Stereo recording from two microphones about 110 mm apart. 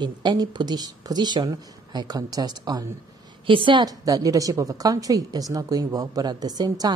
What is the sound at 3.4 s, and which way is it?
Speech, 50° right (ahead or behind).